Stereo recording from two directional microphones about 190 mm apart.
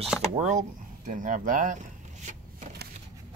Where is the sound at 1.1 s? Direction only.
45° right (ahead or behind).